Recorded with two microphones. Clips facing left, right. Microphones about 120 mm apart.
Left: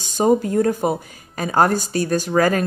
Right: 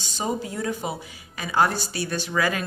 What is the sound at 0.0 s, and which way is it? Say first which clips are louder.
Speech: left 11 dB; 50° left (ahead or behind).